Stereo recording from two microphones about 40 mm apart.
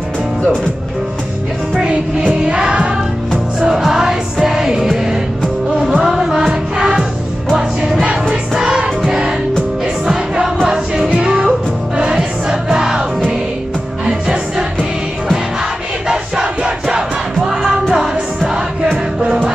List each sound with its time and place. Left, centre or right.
1.9 s music: right
3.6 s music: centre
6.3 s music: right
12.7 s music: centre
14.0 s music: centre
16.1 s crowd: centre
19.1 s music: centre